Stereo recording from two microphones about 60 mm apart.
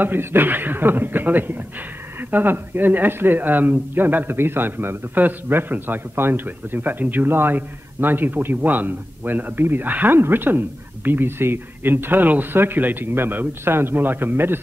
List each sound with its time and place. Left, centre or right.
0.0 s speech: right